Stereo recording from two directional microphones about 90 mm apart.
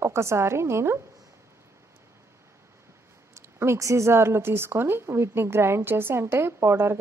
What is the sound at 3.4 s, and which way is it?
A woman's voice, 30° right (ahead or behind).